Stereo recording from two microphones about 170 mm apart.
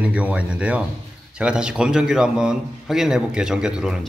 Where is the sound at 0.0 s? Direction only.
5° right (ahead or behind).